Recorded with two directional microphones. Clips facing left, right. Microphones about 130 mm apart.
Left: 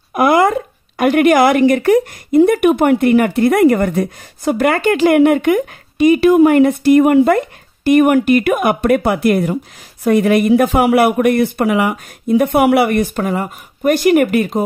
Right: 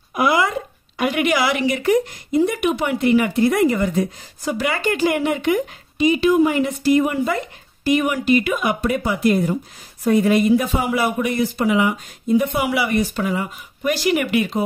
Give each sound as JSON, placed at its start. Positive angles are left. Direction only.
{"t": 0.1, "sound": "a woman's voice", "side_deg": 50}